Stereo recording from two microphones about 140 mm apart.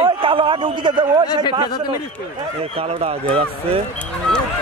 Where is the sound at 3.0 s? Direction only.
45° right (ahead or behind).